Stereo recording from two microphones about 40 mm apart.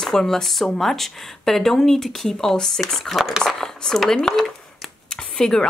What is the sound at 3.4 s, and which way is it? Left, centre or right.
Speech, centre.